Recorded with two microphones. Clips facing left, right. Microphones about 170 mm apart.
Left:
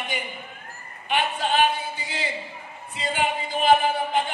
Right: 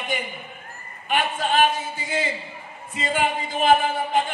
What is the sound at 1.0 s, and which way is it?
Speech, 45° right (ahead or behind).